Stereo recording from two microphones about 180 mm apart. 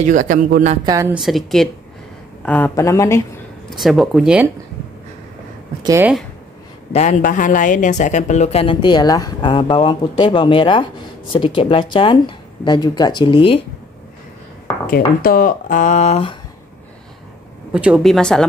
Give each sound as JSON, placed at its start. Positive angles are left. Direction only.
{"t": 0.0, "sound": "a man's voice", "side_deg": -45}
{"t": 1.1, "sound": "a woman's voice", "side_deg": 0}
{"t": 3.7, "sound": "speech", "side_deg": 0}
{"t": 5.8, "sound": "speech", "side_deg": -20}
{"t": 6.9, "sound": "speech", "side_deg": 40}
{"t": 14.9, "sound": "speech", "side_deg": 55}
{"t": 17.7, "sound": "speech", "side_deg": -5}